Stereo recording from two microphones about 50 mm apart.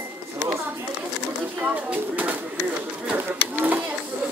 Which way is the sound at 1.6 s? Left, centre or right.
Right.